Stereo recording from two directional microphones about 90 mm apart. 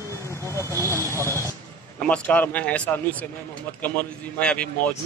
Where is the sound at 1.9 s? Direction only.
15° left (ahead or behind).